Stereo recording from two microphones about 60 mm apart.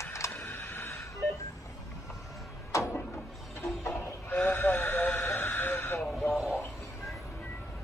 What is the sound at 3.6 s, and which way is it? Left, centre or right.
Music, left.